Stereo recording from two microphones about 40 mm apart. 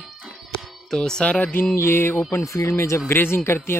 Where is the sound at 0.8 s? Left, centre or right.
Centre.